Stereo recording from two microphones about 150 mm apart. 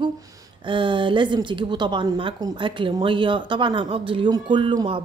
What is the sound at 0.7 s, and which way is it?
A woman's voice, 35° right (ahead or behind).